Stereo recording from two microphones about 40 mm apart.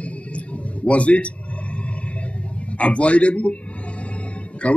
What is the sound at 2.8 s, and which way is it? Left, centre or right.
Speech, left.